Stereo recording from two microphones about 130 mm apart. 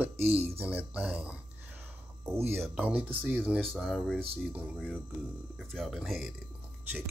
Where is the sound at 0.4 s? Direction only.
15° right (ahead or behind).